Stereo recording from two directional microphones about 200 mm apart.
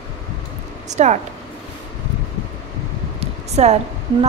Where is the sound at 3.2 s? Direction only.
35° right (ahead or behind).